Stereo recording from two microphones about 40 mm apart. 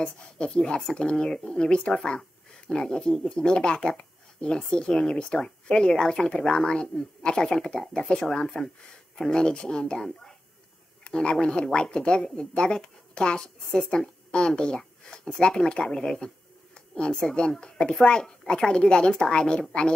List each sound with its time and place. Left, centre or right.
0.0 s speech: centre
3.4 s speech: left
9.9 s a child's voice: centre
11.1 s speech: left
15.0 s a sound: centre
15.4 s speech: left
17.0 s speech: left